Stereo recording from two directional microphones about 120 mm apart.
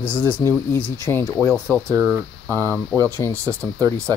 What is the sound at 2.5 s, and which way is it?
Speech, 15° left (ahead or behind).